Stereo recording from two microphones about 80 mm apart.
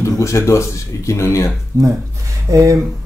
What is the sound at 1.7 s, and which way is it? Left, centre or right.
Speech, right.